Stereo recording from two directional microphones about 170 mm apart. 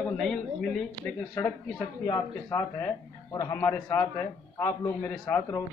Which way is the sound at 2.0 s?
15° left (ahead or behind).